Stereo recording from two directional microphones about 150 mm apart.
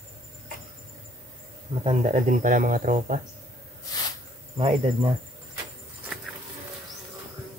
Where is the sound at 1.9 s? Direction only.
50° right (ahead or behind).